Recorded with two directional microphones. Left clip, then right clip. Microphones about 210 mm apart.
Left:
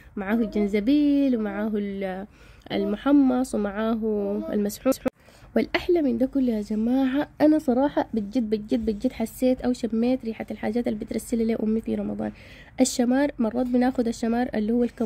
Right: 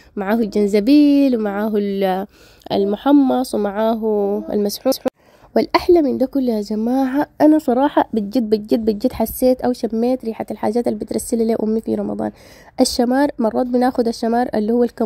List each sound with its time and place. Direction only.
0.1 s a woman's voice: 40° right (ahead or behind)
2.7 s a woman's voice: 35° right (ahead or behind)
6.7 s speech: 20° right (ahead or behind)